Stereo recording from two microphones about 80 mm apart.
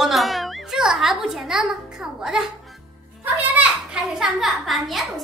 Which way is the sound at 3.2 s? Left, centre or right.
Right.